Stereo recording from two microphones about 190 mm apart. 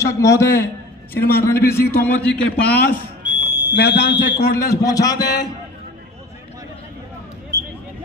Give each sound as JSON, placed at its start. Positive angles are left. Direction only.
{"t": 0.0, "sound": "a man's voice", "side_deg": 15}
{"t": 2.5, "sound": "speech", "side_deg": 60}
{"t": 3.3, "sound": "smoke detector", "side_deg": -10}
{"t": 3.7, "sound": "speech", "side_deg": 60}
{"t": 4.6, "sound": "a man's voice", "side_deg": 15}
{"t": 7.5, "sound": "a sound", "side_deg": -15}